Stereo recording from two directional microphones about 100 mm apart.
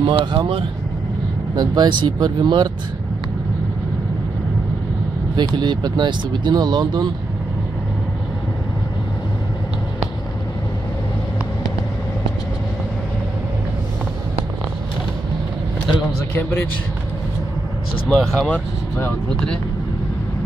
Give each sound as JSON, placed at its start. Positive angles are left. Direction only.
{"t": 0.0, "sound": "speech", "side_deg": -55}
{"t": 1.5, "sound": "speech", "side_deg": -45}
{"t": 5.3, "sound": "speech", "side_deg": -45}
{"t": 18.0, "sound": "speech", "side_deg": 5}